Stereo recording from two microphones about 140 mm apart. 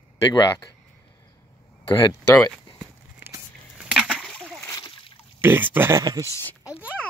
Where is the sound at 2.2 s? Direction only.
20° left (ahead or behind).